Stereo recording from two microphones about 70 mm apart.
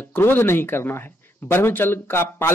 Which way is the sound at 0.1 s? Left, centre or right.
Left.